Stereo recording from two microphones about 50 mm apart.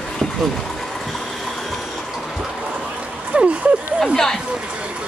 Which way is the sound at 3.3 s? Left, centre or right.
Right.